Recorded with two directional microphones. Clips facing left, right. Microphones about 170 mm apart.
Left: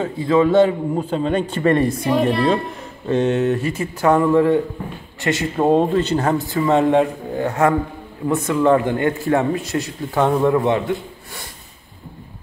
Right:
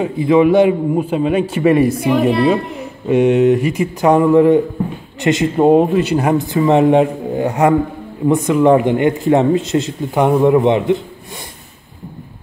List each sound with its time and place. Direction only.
0.0 s a man's voice: 15° right (ahead or behind)